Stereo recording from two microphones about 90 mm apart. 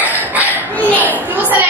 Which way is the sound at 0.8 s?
20° left (ahead or behind).